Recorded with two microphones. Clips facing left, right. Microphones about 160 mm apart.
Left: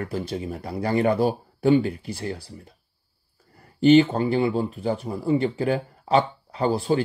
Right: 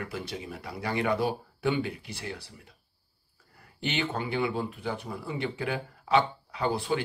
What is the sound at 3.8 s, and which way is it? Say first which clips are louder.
Speech: left 15 dB; 35° left (ahead or behind).